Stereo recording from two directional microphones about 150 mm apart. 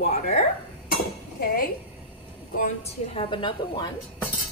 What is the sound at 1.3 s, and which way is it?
Speech, 85° left.